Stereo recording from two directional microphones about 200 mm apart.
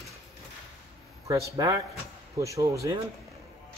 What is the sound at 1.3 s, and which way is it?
Speech, 15° right (ahead or behind).